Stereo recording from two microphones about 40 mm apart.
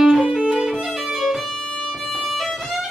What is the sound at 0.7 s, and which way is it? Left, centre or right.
Violin, centre.